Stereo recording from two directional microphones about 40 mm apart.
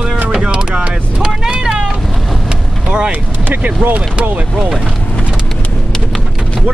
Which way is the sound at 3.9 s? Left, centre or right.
Right.